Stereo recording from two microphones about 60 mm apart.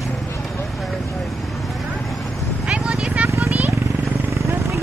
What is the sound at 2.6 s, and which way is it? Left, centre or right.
Vehicle, centre.